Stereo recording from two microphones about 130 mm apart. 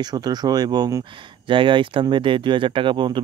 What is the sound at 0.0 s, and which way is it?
Speech, 30° right (ahead or behind).